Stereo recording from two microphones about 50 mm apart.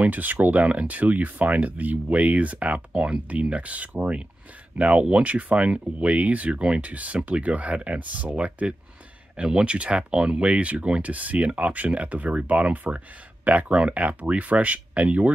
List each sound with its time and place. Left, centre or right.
0.0 s speech: right